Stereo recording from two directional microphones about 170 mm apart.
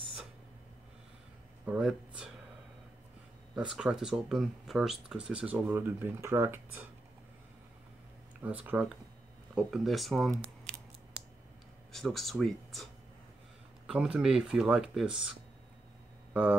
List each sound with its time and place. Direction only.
1.7 s speech: 5° right (ahead or behind)
3.5 s speech: 5° right (ahead or behind)
8.4 s speech: 10° right (ahead or behind)
11.9 s speech: centre (ahead or behind)
13.8 s speech: 5° right (ahead or behind)